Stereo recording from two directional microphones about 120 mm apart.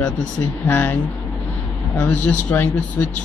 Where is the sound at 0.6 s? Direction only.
10° left (ahead or behind).